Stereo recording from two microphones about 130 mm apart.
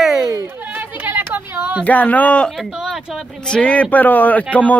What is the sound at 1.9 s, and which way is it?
A man's voice, 10° left (ahead or behind).